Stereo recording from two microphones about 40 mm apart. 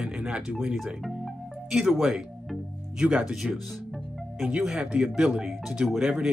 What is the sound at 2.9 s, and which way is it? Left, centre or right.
Speech, right.